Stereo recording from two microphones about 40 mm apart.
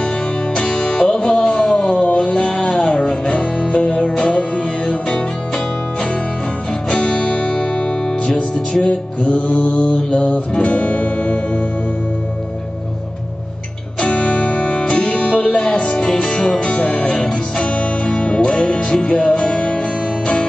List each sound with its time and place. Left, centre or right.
0.7 s music: centre
6.9 s music: left
14.0 s music: left; by 16.6 s centre
16.6 s music: left